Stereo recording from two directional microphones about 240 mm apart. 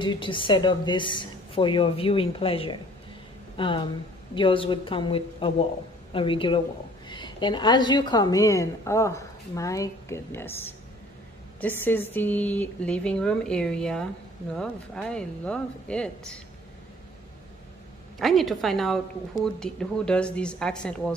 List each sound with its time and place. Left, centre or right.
0.0 s a woman's voice: centre
18.2 s speech: centre